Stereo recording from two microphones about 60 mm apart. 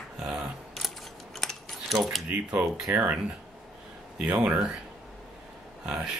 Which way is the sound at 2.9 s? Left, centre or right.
Right.